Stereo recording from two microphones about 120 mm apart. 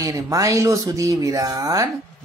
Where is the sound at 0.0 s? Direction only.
30° right (ahead or behind).